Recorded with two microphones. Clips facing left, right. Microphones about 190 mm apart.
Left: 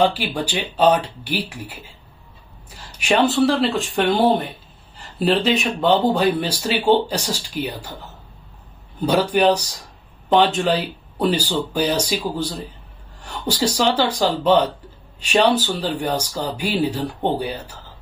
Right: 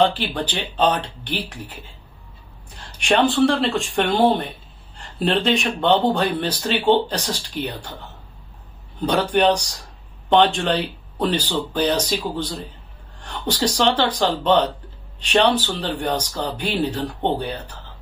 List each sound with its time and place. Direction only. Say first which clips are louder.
0.0 s speech: even; 10° left (ahead or behind)
9.0 s speech: left 1 dB; 10° left (ahead or behind)